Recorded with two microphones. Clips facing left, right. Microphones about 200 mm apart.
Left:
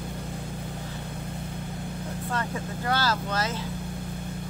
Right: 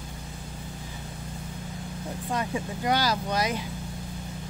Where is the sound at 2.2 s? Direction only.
15° right (ahead or behind).